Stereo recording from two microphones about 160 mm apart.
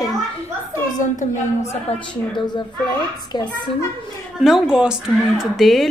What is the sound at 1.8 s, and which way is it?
Speech, 30° left (ahead or behind).